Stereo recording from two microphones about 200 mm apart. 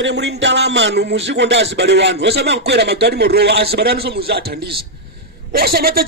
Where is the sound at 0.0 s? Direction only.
60° right (ahead or behind).